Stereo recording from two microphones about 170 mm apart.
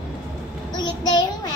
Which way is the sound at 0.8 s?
25° left (ahead or behind).